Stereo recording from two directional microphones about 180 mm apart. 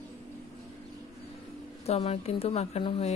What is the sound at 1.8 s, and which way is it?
Speech, 35° left (ahead or behind).